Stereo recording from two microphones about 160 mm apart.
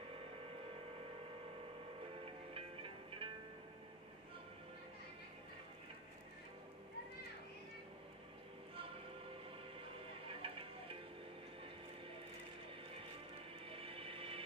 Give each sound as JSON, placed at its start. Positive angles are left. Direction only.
{"t": 2.5, "sound": "music", "side_deg": -35}
{"t": 10.2, "sound": "a sound", "side_deg": -35}
{"t": 13.7, "sound": "music", "side_deg": -35}